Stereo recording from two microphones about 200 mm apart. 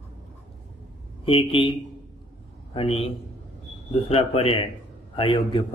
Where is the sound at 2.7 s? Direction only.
30° left (ahead or behind).